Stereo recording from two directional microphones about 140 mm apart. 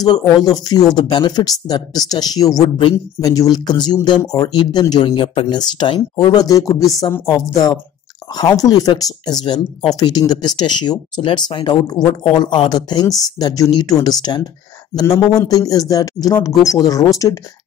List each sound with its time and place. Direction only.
0.0 s a woman's voice: 30° left (ahead or behind)
7.5 s speech: 30° left (ahead or behind)